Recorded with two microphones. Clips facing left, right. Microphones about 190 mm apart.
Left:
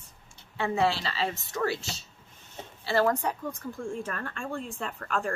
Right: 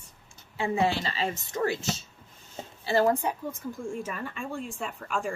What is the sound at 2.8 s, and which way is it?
Speech, 15° right (ahead or behind).